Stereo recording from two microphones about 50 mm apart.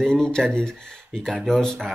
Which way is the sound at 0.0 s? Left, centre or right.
Centre.